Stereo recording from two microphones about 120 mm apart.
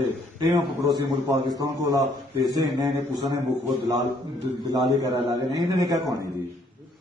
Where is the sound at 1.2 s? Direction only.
30° right (ahead or behind).